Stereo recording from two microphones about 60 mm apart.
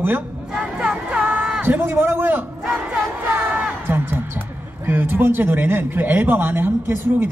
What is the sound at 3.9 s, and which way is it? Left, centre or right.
Speech, right.